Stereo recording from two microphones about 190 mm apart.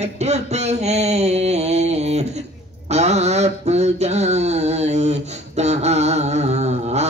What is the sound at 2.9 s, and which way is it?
Mantra, 35° right (ahead or behind).